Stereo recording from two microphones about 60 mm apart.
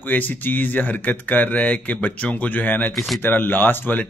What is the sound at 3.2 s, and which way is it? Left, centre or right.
Speech, left.